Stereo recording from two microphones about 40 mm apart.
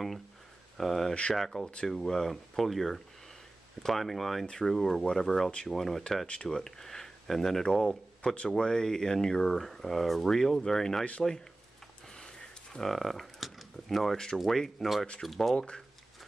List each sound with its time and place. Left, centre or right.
0.7 s speech: centre
6.2 s speech: left; by 7.6 s centre
7.6 s speech: centre
12.1 s a sound: centre
12.9 s a sound: centre
14.1 s speech: centre
14.4 s speech: centre